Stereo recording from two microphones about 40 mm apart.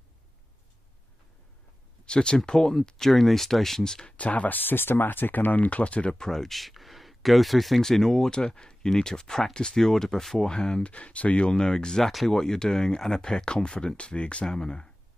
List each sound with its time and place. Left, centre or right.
2.0 s speech: left
3.1 s speech: centre
4.2 s speech: left
6.1 s speech: centre
9.8 s speech: centre
10.8 s speech: left
12.0 s speech: centre
12.3 s speech: centre; by 14.4 s left
14.4 s speech: centre